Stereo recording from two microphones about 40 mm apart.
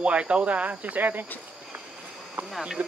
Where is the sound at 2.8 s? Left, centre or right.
Right.